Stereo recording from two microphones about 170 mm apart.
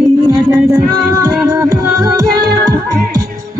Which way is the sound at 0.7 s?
20° right (ahead or behind).